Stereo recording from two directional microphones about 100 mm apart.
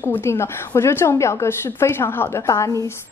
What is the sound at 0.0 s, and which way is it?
A woman's voice, 25° left (ahead or behind).